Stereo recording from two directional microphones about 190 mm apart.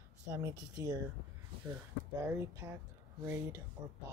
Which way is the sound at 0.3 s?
15° right (ahead or behind).